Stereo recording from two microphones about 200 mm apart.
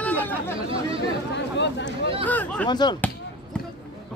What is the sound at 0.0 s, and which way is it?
Chatter, 10° left (ahead or behind).